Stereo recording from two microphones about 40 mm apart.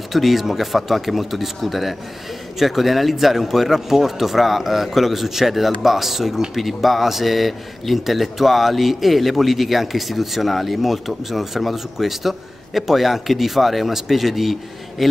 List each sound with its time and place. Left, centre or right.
0.1 s speech: centre